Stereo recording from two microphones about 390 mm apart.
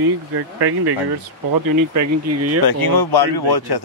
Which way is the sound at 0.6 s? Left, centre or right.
Right.